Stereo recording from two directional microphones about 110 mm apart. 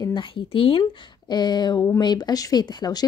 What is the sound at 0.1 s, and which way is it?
Speech, 50° left (ahead or behind).